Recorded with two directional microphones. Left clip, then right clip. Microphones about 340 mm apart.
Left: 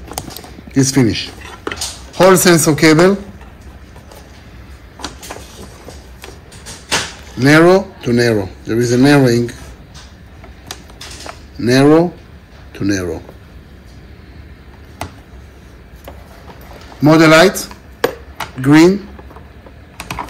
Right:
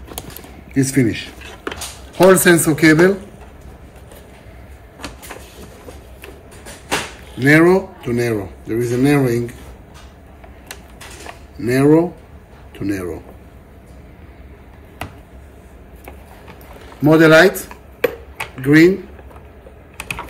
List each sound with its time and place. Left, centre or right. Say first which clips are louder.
0.7 s speech: left 4 dB; centre
2.3 s speech: left 2 dB; centre
7.3 s speech: left 3 dB; centre
11.6 s speech: left 3 dB; centre
17.0 s speech: left 2 dB; centre